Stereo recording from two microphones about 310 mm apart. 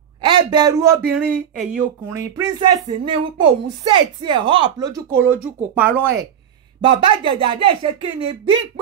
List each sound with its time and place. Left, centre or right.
0.2 s speech: centre